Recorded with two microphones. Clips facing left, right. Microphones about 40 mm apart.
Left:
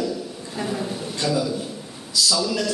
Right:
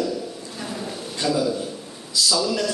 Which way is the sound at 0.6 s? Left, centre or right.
Centre.